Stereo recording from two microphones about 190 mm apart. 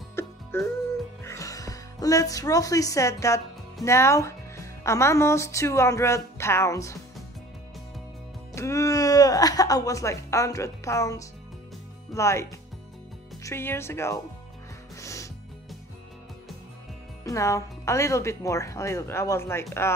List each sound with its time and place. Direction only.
0.1 s music: 10° left (ahead or behind)
1.2 s speech: 15° left (ahead or behind)
8.5 s speech: 15° left (ahead or behind)
15.0 s music: 15° left (ahead or behind)
17.2 s speech: 15° left (ahead or behind)